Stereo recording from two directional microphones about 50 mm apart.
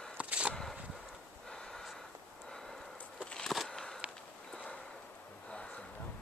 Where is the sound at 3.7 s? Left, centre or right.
Centre.